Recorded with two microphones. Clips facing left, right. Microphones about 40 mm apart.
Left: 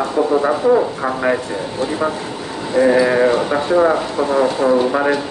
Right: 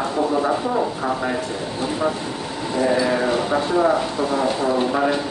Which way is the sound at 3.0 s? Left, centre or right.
Left.